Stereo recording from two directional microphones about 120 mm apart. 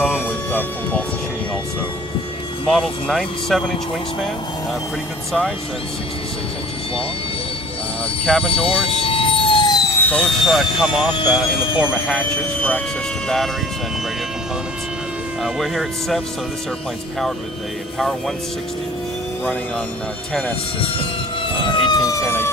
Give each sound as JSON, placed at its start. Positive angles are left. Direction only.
{"t": 0.1, "sound": "vehicle", "side_deg": 15}
{"t": 2.6, "sound": "speech", "side_deg": 5}
{"t": 8.5, "sound": "vehicle", "side_deg": 50}
{"t": 9.9, "sound": "speech", "side_deg": 10}
{"t": 12.2, "sound": "speech", "side_deg": 10}
{"t": 15.4, "sound": "speech", "side_deg": 0}
{"t": 20.8, "sound": "speech", "side_deg": 45}